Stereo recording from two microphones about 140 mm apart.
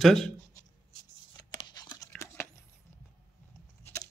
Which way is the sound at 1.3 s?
30° left (ahead or behind).